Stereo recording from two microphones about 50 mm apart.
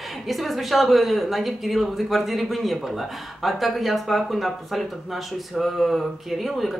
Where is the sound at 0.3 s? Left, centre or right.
Centre.